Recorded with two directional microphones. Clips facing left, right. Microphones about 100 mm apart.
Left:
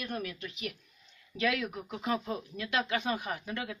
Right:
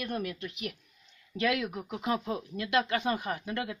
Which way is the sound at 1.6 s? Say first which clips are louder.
Right 2 dB; 15° right (ahead or behind).